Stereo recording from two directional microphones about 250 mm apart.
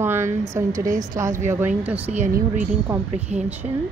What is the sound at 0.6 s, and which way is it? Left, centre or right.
A woman's voice, centre.